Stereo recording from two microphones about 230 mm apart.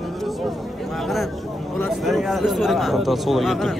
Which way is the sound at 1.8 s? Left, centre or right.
Centre.